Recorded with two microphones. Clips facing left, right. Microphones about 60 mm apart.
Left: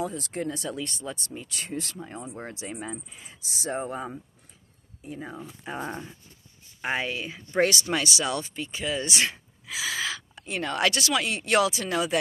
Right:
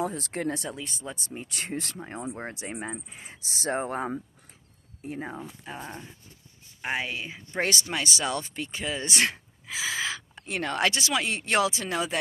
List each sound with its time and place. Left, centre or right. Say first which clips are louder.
0.0 s speech: right 1 dB; right
0.7 s speech: left 4 dB; centre
1.0 s speech: left 2 dB; centre
1.3 s speech: even; right
5.8 s dog: left 7 dB; left
6.8 s speech: left 2 dB; centre
8.0 s speech: left 1 dB; right
9.1 s speech: right 1 dB; right
9.7 s gasp: even; right
10.4 s speech: even; right
10.9 s speech: left 1 dB; right